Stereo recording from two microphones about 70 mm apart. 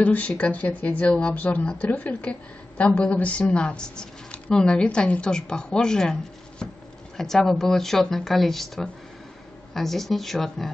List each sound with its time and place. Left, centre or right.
0.0 s speech: left; by 10.7 s centre